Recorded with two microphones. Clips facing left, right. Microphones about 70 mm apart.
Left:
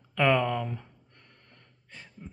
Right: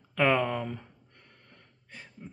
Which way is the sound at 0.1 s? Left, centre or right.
Right.